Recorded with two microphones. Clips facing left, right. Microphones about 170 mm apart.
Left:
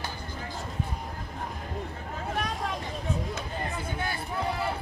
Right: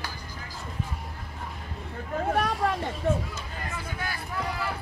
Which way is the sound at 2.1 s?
55° right (ahead or behind).